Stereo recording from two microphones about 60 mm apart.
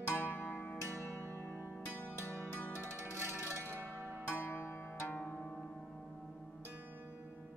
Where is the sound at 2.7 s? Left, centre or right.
Right.